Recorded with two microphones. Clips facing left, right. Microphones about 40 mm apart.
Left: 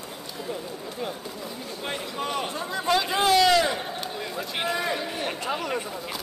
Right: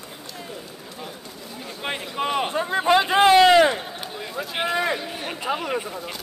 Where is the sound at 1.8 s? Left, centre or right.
Right.